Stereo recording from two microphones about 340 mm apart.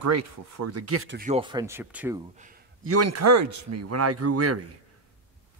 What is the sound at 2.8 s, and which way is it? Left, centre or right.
Speech, right.